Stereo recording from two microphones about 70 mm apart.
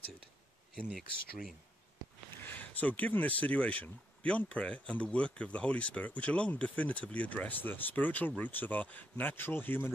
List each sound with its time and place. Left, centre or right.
0.8 s speech: centre
2.4 s speech: left